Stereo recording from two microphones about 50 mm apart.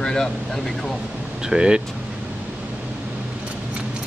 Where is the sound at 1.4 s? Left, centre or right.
Centre.